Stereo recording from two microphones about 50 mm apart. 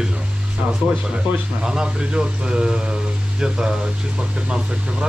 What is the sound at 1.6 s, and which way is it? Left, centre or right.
Speech, centre.